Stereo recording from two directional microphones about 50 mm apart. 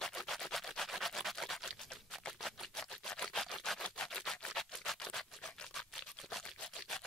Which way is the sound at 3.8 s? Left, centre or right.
Centre.